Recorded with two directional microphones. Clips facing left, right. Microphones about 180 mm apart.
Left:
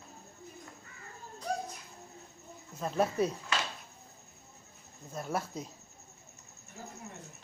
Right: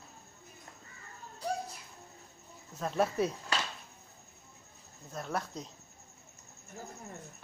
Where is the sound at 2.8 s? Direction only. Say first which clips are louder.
Left 1 dB; centre (ahead or behind).